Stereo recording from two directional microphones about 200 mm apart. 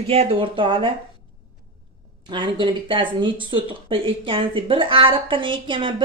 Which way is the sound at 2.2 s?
25° right (ahead or behind).